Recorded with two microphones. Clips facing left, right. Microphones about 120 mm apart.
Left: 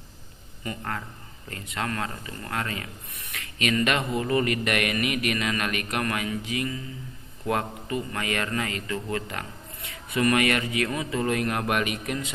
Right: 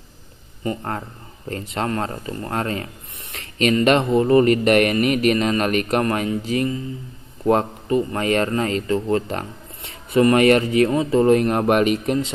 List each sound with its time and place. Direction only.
0.7 s speech: 35° right (ahead or behind)